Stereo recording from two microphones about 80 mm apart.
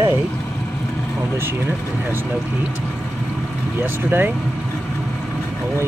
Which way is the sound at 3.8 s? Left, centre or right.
Right.